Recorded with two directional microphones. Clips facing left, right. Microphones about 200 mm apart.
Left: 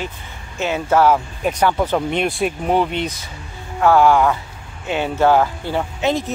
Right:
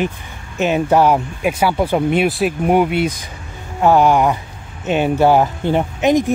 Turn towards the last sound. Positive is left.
turn(degrees=-15)  # may be behind; listen again after turning